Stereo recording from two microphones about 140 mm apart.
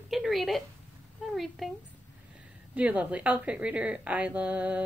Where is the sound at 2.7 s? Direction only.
10° right (ahead or behind).